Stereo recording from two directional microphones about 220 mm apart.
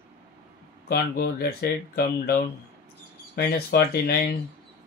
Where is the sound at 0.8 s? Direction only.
45° left (ahead or behind).